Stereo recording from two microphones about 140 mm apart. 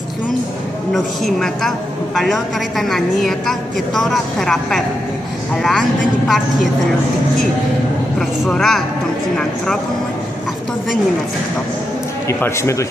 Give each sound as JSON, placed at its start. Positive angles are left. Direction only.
{"t": 0.9, "sound": "a woman's voice", "side_deg": 0}
{"t": 8.2, "sound": "a woman's voice", "side_deg": 0}
{"t": 12.3, "sound": "speech", "side_deg": 20}